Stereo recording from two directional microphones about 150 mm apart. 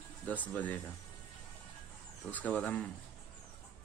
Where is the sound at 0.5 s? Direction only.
10° left (ahead or behind).